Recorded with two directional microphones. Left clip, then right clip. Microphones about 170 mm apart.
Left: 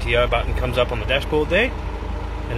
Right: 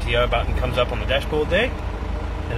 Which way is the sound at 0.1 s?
15° left (ahead or behind).